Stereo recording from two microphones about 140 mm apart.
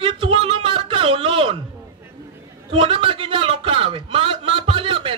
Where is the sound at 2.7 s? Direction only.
40° right (ahead or behind).